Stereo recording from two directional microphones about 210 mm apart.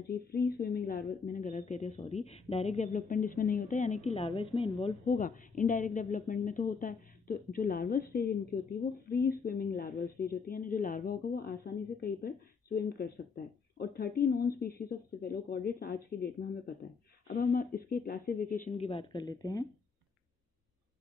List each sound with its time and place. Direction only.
0.1 s a woman's voice: 45° left (ahead or behind); by 5.1 s 30° left (ahead or behind)
5.1 s speech: 40° left (ahead or behind)
18.6 s speech: 30° left (ahead or behind)